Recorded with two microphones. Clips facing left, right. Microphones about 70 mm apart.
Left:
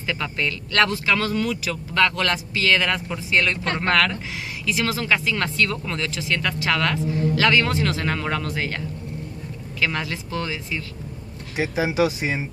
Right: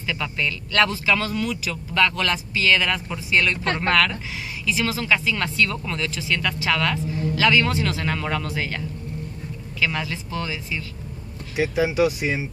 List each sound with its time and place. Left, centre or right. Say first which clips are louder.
0.0 s speech: left 1 dB; left
4.6 s speech: even; left
5.0 s speech: even; left
11.8 s speech: even; left